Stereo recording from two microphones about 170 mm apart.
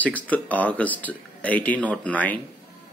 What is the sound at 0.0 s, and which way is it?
Speech, 10° left (ahead or behind).